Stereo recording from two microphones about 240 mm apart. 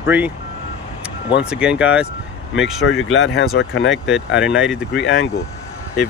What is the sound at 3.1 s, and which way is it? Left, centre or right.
Speech, left.